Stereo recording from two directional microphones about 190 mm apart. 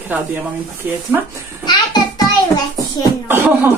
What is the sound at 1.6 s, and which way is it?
Music, 20° left (ahead or behind).